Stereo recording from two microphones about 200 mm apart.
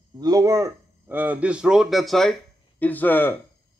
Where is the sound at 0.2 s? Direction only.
20° right (ahead or behind).